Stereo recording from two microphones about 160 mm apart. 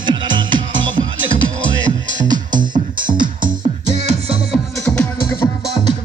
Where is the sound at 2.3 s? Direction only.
30° right (ahead or behind).